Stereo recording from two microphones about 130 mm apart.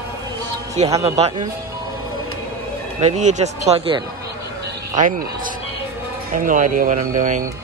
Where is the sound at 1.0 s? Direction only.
50° right (ahead or behind).